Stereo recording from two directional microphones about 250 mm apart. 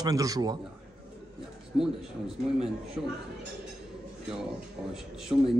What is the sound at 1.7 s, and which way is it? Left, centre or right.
Speech, centre.